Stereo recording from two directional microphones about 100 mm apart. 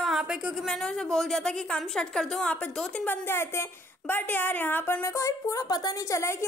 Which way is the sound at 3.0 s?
25° left (ahead or behind).